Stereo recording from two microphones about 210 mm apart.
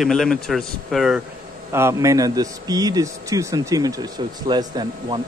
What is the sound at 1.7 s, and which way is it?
Speech, 15° right (ahead or behind).